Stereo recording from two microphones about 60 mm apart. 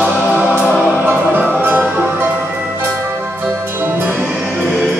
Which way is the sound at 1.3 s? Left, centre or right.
Right.